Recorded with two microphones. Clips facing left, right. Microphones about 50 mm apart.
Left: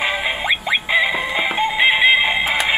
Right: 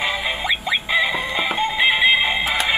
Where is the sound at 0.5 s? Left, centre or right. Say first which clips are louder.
Left 3 dB; left.